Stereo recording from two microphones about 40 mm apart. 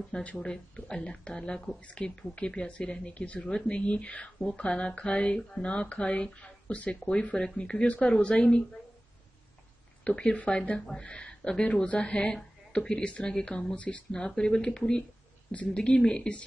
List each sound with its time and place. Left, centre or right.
0.1 s speech: left
0.5 s speech: centre
10.0 s speech: left
13.7 s speech: left
14.1 s speech: centre